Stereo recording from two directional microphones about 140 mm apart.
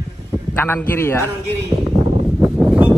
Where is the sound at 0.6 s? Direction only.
15° left (ahead or behind).